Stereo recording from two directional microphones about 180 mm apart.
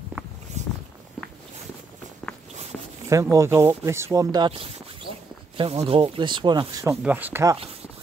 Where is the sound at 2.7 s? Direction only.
10° left (ahead or behind).